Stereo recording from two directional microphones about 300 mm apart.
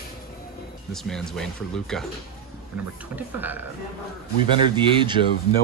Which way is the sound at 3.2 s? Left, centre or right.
Centre.